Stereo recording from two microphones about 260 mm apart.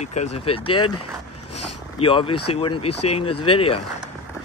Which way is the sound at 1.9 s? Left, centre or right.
Left.